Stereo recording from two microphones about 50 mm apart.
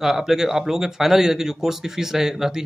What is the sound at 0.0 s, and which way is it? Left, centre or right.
A man's voice, centre.